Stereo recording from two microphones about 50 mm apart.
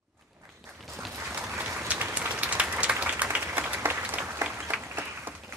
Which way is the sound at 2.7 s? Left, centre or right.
Right.